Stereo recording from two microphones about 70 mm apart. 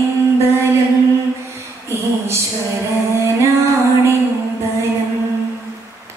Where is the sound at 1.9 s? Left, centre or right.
Right.